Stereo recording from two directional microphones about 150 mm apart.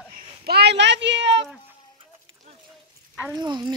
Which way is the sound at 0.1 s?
90° right.